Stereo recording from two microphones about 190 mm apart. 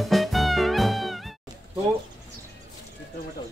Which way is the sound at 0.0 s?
Centre (ahead or behind).